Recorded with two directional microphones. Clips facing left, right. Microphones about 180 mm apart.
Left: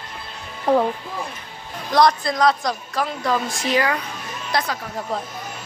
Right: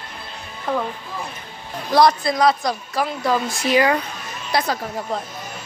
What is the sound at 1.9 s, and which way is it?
Speech, 5° right (ahead or behind).